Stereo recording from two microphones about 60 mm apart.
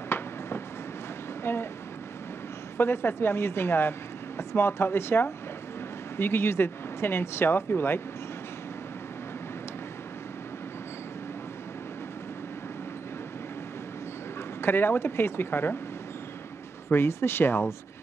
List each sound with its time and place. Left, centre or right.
1.4 s a sound: left
2.8 s speech: left
14.6 s speech: left
16.9 s speech: left